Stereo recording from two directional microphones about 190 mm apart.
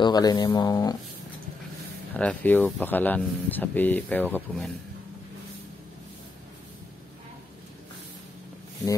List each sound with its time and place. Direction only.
0.0 s speech: 20° left (ahead or behind)
2.1 s speech: 10° left (ahead or behind)